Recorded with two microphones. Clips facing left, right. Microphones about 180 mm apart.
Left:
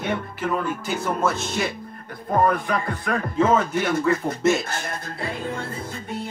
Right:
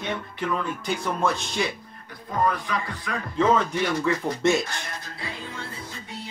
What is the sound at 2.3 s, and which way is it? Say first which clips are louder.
Music: left 5 dB; 55° left (ahead or behind).